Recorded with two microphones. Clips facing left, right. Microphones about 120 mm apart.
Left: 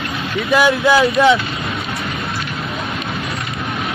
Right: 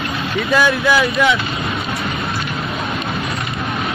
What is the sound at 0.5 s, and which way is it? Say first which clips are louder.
Speech: left 2 dB; 20° left (ahead or behind).